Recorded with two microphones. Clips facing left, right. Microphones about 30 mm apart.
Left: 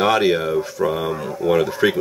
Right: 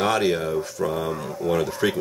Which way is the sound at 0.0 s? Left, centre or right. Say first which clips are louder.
Left 5 dB; centre.